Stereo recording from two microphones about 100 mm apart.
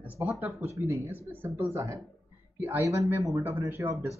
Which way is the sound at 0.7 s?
25° right (ahead or behind).